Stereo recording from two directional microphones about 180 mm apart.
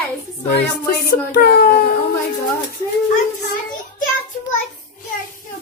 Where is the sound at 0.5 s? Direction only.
60° left (ahead or behind).